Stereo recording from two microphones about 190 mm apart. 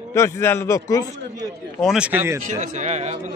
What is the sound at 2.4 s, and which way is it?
Speech, 40° right (ahead or behind).